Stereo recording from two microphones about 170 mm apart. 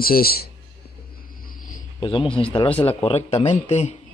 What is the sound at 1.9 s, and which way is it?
A man's voice, 30° left (ahead or behind).